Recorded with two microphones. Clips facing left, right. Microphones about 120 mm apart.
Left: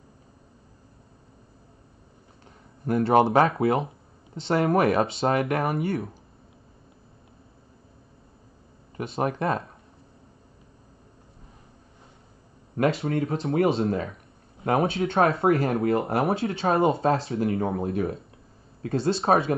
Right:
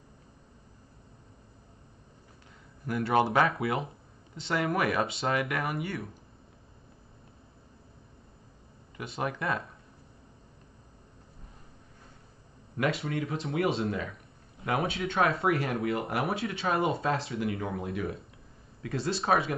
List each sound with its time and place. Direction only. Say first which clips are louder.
2.8 s speech: left 6 dB; 30° left (ahead or behind)
8.9 s speech: left 7 dB; 30° left (ahead or behind)
12.7 s speech: left 6 dB; 30° left (ahead or behind)